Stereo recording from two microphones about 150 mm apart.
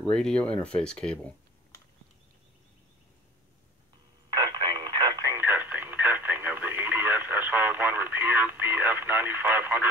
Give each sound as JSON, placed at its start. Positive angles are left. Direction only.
{"t": 0.0, "sound": "speech", "side_deg": 5}
{"t": 4.3, "sound": "a sound", "side_deg": -30}
{"t": 5.4, "sound": "radio", "side_deg": -15}